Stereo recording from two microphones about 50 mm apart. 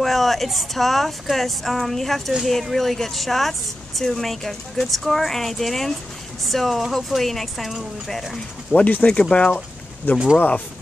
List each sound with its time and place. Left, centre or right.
0.0 s a woman's voice: centre
8.7 s speech: left
9.0 s speech: centre